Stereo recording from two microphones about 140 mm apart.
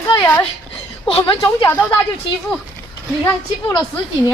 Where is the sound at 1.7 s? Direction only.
10° left (ahead or behind).